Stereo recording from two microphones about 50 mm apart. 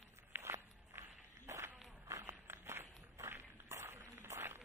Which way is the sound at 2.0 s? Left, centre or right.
Right.